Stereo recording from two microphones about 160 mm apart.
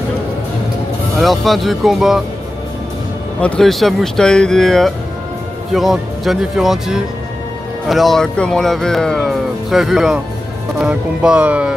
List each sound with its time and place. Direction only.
1.1 s speech: centre (ahead or behind)
3.3 s speech: 5° left (ahead or behind)